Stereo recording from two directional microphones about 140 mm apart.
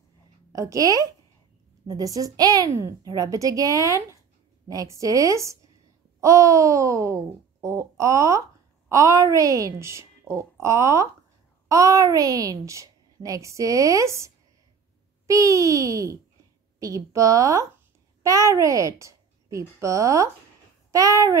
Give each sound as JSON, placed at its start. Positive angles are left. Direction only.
{"t": 0.5, "sound": "a child's voice", "side_deg": -25}